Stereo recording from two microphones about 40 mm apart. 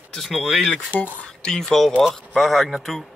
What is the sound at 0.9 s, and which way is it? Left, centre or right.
Speech, left.